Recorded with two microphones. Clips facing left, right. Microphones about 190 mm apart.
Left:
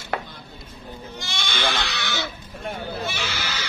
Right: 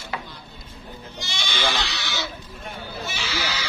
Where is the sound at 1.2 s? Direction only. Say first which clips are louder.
Even; 55° left (ahead or behind).